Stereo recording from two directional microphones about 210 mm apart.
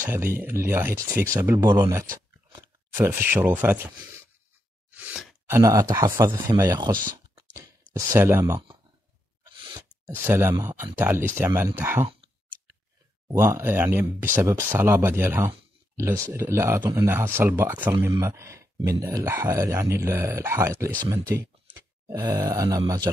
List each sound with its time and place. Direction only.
0.0 s speech: 10° right (ahead or behind)
4.9 s plop: 5° right (ahead or behind)
5.6 s speech: 15° right (ahead or behind)
13.3 s speech: 10° right (ahead or behind)
22.0 s speech: 15° right (ahead or behind)